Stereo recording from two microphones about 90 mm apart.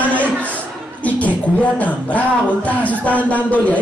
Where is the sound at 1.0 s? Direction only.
15° left (ahead or behind).